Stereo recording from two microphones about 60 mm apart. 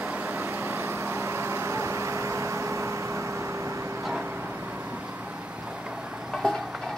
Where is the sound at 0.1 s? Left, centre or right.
Right.